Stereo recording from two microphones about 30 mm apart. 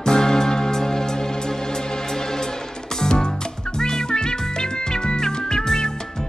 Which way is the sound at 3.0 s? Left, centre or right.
Left.